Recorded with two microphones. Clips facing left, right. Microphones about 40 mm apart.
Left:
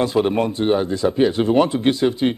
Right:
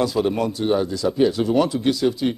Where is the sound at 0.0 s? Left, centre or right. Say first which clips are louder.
Left 2 dB; left.